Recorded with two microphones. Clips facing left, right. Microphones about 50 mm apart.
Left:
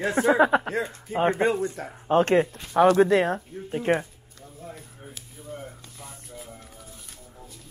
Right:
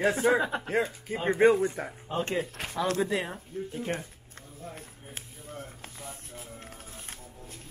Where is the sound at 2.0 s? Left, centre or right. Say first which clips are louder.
Left 12 dB; left.